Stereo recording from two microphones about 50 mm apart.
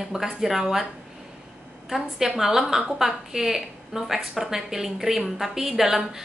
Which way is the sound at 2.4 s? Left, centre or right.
Centre.